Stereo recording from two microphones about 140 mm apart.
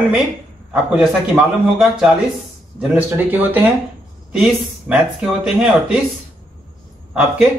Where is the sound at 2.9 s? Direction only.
15° right (ahead or behind).